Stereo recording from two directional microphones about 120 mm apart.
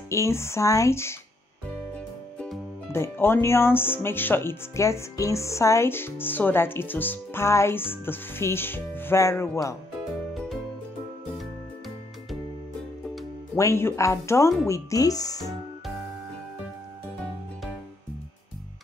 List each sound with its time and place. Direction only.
0.1 s speech: 25° left (ahead or behind)
2.3 s music: 5° left (ahead or behind)
2.9 s speech: 20° left (ahead or behind)
13.6 s speech: 25° left (ahead or behind)